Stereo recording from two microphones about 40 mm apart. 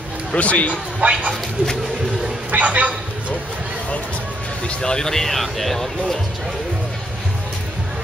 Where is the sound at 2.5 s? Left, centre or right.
Right.